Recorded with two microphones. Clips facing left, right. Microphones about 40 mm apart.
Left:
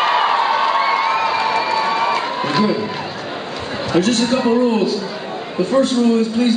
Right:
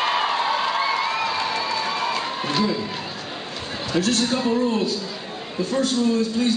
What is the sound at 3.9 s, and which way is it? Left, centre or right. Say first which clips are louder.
Speech: left 6 dB; centre.